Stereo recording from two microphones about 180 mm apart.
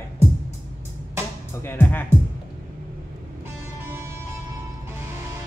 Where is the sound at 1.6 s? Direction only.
10° left (ahead or behind).